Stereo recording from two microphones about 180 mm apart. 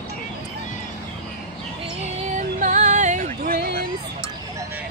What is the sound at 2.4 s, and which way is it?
Music, 45° right (ahead or behind).